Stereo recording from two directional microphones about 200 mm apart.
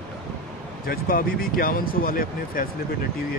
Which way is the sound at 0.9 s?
45° left (ahead or behind).